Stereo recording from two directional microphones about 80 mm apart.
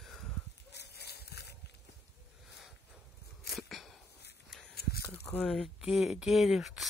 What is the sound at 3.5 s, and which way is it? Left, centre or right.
Cough, centre.